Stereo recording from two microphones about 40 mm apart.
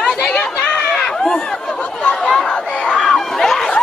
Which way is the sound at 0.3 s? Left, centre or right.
Left.